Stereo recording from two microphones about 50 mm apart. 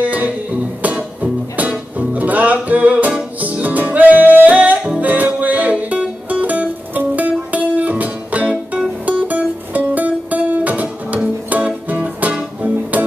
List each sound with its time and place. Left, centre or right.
0.0 s music: right